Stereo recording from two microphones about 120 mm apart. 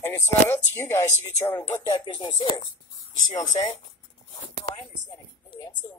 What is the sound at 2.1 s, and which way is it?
Speech, 40° left (ahead or behind).